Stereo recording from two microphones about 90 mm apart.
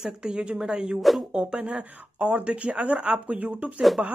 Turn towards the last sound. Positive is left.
turn(degrees=-15)  # may be behind; listen again after turning